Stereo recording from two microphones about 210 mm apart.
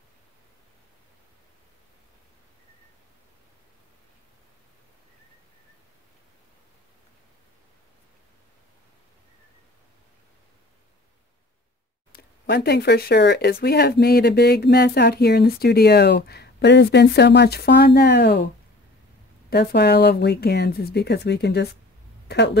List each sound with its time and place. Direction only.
12.1 s speech: 50° left (ahead or behind)
19.5 s speech: 50° left (ahead or behind)